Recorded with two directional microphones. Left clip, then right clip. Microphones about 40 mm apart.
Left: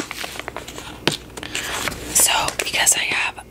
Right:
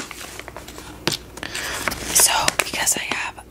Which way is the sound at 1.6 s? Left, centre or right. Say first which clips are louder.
Right 2 dB; centre.